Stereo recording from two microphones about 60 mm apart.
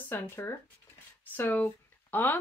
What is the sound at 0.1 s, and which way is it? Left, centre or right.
Speech, left.